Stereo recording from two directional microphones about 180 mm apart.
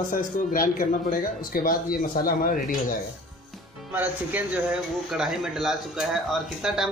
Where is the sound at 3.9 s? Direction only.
10° right (ahead or behind).